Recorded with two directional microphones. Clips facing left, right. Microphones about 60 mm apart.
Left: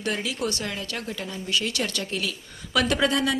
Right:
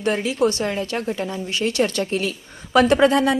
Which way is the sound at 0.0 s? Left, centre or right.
Right.